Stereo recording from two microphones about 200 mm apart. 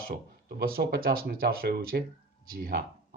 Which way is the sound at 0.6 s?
50° right (ahead or behind).